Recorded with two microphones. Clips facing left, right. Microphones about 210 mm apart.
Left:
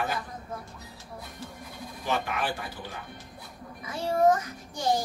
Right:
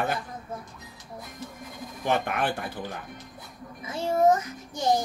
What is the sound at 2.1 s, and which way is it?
Speech, 55° right (ahead or behind).